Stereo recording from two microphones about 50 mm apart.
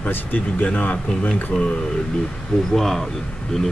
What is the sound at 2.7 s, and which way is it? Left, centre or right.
Speech, centre.